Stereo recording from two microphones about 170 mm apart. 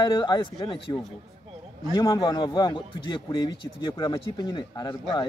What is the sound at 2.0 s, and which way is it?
Speech, 25° left (ahead or behind).